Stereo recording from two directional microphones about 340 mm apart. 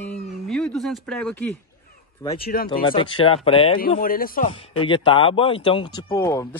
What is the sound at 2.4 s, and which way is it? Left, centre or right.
Speech, left.